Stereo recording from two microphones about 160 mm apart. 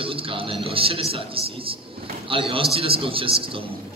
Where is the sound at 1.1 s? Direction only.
35° right (ahead or behind).